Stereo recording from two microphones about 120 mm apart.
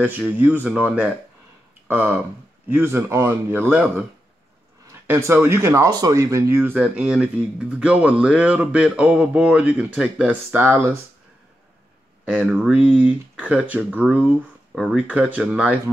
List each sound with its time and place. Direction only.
0.0 s a man's voice: 10° right (ahead or behind)
5.0 s speech: 20° right (ahead or behind)
12.3 s speech: 10° right (ahead or behind)